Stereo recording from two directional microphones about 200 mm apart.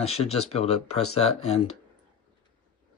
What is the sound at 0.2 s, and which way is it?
Speech, 30° left (ahead or behind).